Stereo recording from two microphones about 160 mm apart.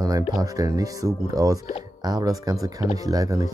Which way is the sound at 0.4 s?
20° right (ahead or behind).